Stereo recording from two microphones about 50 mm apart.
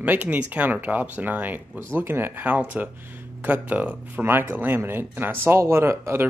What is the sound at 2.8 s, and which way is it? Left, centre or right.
Speech, right.